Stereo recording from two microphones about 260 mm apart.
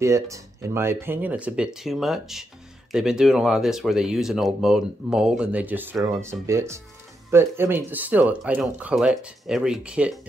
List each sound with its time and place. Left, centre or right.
0.0 s speech: centre